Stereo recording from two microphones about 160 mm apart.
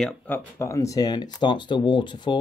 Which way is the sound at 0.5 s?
20° left (ahead or behind).